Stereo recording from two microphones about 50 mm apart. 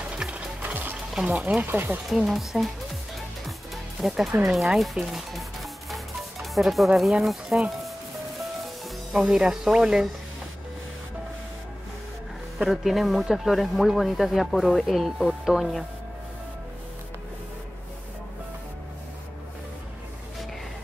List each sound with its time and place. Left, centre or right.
0.2 s music: centre
1.2 s speech: right
1.7 s speech: right
2.0 s speech: centre
3.4 s music: centre
4.6 s speech: centre
9.1 s speech: centre
12.6 s speech: centre